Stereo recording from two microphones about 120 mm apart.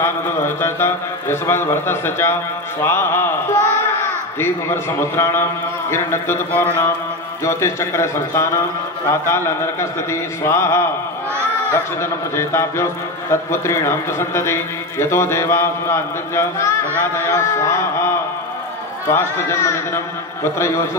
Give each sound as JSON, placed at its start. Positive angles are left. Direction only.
{"t": 0.6, "sound": "a man's voice", "side_deg": 20}
{"t": 12.0, "sound": "a man's voice", "side_deg": 20}